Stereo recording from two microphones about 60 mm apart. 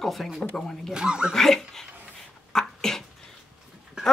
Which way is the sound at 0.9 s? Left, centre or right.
Centre.